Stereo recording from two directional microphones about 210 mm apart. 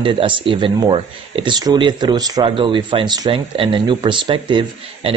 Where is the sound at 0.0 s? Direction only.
25° right (ahead or behind).